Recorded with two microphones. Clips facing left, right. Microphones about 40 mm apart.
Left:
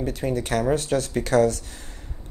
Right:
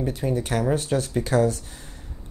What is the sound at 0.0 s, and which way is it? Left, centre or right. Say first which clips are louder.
Speech: even; left.